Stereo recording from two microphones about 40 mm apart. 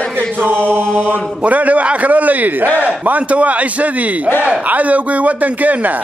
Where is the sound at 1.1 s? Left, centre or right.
Right.